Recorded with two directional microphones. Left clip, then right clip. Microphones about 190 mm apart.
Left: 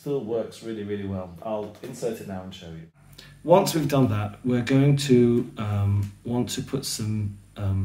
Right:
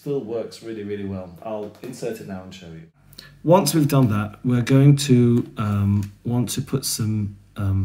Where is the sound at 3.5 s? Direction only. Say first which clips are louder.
Right 2 dB; 50° right (ahead or behind).